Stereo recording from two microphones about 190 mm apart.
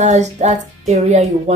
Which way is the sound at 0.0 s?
35° right (ahead or behind).